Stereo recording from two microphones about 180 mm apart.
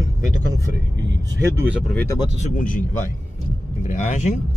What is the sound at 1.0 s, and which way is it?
Speech, 90° right.